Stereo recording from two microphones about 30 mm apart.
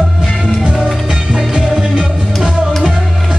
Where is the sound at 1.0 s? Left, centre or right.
Centre.